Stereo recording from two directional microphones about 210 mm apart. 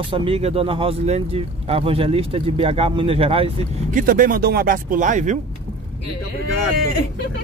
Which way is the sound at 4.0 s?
40° right (ahead or behind).